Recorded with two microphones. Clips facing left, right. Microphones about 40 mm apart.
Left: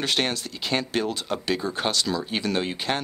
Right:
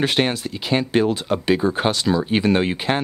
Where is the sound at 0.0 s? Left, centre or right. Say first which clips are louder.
Right 6 dB; centre.